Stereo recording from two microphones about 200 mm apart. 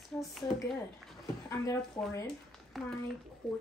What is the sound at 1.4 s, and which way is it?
Speech, 15° left (ahead or behind).